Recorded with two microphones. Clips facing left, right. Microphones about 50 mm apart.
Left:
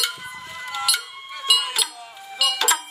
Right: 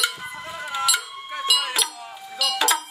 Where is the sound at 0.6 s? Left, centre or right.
Centre.